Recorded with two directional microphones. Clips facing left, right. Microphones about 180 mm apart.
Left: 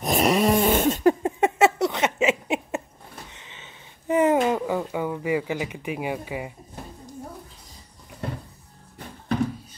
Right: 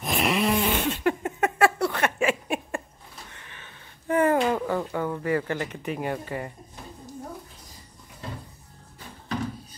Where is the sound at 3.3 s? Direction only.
20° left (ahead or behind).